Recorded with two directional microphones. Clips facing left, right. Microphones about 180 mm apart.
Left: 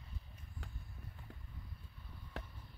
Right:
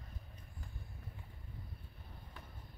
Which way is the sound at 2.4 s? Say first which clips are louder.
Left 9 dB; 90° left.